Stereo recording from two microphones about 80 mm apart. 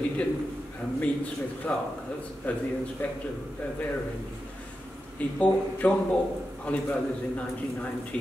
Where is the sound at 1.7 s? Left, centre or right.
Centre.